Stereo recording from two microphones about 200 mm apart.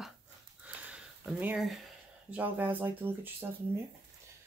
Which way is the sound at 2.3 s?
10° right (ahead or behind).